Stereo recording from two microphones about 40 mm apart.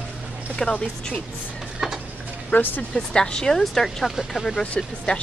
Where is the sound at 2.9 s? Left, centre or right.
Left.